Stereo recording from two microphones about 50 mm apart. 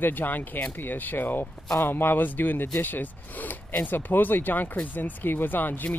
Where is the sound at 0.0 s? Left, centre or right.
Left.